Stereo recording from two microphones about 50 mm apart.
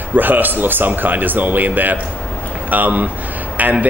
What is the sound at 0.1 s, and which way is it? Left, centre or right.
A man's voice, right.